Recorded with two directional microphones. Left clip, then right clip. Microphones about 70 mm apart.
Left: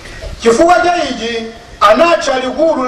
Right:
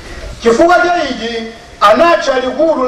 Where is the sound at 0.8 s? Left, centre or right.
Left.